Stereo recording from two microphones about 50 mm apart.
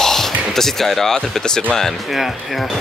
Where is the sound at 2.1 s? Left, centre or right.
Centre.